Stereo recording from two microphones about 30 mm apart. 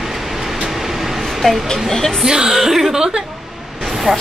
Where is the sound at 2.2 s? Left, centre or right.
Right.